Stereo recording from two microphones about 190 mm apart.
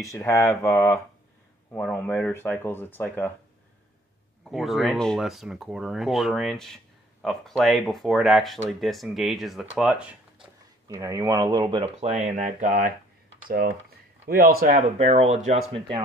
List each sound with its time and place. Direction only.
0.0 s speech: 15° left (ahead or behind)
4.5 s speech: centre (ahead or behind)
10.9 s speech: 15° right (ahead or behind); by 14.8 s 50° right (ahead or behind)
15.0 s speech: 35° right (ahead or behind)